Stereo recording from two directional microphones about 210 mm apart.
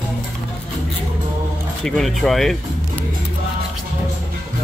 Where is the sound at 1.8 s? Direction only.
Centre (ahead or behind).